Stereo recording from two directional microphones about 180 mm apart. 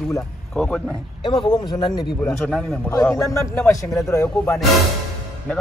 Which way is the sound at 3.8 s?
Centre (ahead or behind).